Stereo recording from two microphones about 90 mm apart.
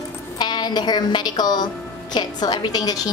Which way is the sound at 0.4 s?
50° left (ahead or behind).